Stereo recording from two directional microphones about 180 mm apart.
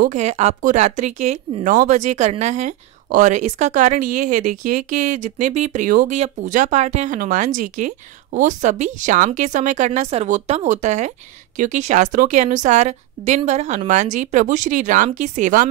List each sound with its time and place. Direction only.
0.1 s speech: 40° right (ahead or behind)